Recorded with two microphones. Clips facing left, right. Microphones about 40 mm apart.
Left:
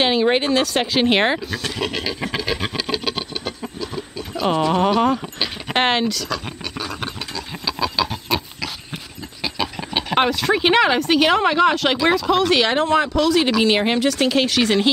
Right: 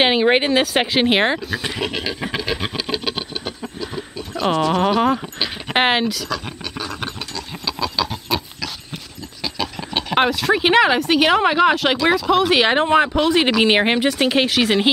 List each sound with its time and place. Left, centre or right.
0.0 s speech: right; by 1.6 s centre
1.6 s a sound: centre
4.6 s speech: centre
5.7 s scratch: centre
8.5 s speech: centre